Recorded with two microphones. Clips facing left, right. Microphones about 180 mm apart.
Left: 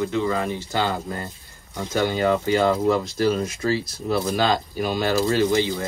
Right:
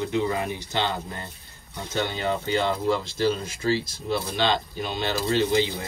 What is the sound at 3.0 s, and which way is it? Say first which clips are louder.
Speech: left 3 dB; 30° right (ahead or behind).